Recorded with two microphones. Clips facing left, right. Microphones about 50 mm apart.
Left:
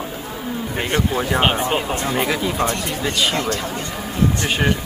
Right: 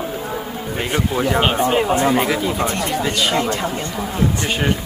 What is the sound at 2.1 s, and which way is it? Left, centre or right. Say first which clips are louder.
Speech: right 2 dB; centre.